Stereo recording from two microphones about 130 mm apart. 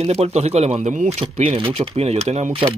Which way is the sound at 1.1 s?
50° right (ahead or behind).